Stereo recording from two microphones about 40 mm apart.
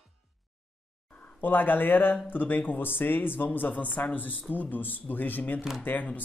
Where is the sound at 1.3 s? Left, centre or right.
Left.